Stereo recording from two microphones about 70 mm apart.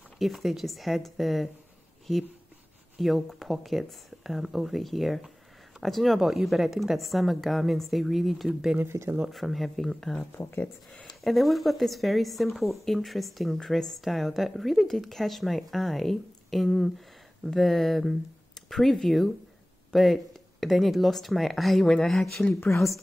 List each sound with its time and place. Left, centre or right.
0.2 s speech: centre
3.0 s speech: centre
8.7 s speech: right
9.3 s speech: centre
10.6 s speech: centre
11.1 s speech: centre